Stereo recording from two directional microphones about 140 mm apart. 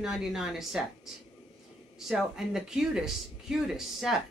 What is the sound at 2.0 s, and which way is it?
Speech, centre (ahead or behind).